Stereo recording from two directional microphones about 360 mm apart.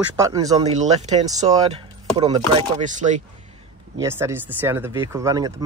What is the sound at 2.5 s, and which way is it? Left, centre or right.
Chopping, centre.